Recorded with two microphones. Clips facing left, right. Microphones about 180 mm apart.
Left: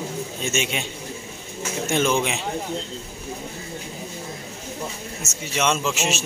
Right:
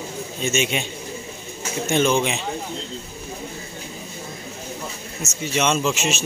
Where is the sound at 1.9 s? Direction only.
5° left (ahead or behind).